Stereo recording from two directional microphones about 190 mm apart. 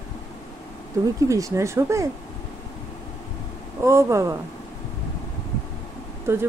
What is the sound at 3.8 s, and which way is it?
Speech, 15° right (ahead or behind).